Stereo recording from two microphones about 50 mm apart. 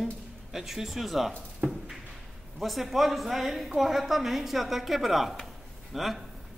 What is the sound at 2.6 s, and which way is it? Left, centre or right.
A woman's voice, centre.